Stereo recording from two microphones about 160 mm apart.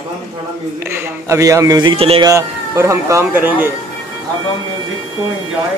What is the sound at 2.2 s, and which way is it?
Speech, 20° right (ahead or behind).